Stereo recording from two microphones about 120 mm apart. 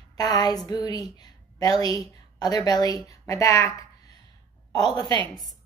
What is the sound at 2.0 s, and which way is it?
A woman's voice, 30° left (ahead or behind).